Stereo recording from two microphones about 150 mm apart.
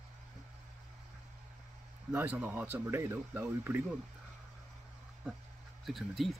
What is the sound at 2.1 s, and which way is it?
Speech, 10° right (ahead or behind).